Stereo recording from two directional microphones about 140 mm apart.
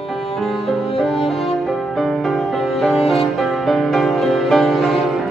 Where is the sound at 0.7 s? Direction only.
Centre (ahead or behind).